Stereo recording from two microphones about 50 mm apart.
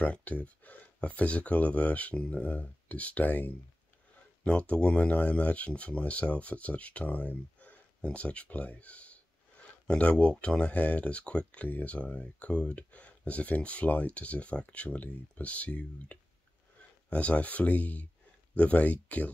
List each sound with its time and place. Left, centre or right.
0.0 s speech: left
4.5 s speech: left